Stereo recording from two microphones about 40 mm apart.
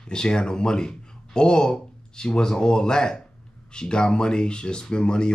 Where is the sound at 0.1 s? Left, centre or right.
Centre.